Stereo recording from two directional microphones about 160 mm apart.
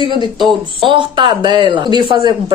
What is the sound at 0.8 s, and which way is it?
Speech, 30° right (ahead or behind).